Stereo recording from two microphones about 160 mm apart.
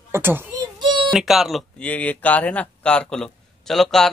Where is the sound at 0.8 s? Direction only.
30° right (ahead or behind).